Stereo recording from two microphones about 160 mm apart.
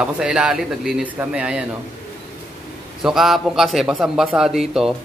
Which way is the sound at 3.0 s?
Centre (ahead or behind).